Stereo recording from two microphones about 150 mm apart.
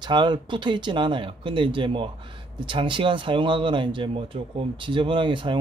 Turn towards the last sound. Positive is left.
turn(degrees=-30)  # may be behind; listen again after turning